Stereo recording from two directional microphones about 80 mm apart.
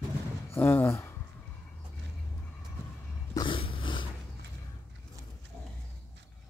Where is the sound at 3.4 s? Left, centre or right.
Left.